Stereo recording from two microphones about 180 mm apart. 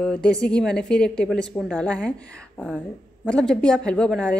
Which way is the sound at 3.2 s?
5° left (ahead or behind).